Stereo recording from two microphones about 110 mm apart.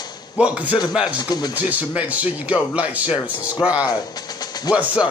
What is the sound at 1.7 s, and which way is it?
Speech, 15° right (ahead or behind).